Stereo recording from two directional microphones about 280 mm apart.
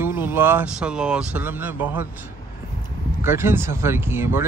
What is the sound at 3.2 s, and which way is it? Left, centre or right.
Speech, centre.